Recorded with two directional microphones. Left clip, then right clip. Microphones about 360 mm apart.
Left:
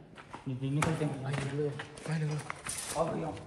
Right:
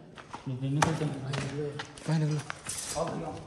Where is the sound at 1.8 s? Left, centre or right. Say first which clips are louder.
Right 4 dB; centre.